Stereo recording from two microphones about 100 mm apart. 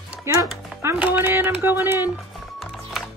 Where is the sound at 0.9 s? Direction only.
15° right (ahead or behind).